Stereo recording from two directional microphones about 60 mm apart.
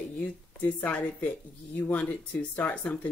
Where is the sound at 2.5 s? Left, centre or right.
Left.